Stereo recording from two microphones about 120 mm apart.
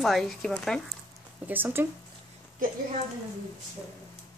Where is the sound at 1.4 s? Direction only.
15° right (ahead or behind).